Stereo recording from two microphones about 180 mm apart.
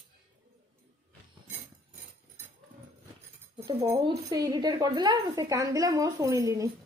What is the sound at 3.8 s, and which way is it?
Speech, 20° right (ahead or behind).